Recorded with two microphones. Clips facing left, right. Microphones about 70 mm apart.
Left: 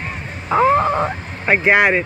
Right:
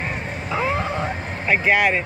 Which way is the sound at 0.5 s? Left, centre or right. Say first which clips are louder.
Left 9 dB; left.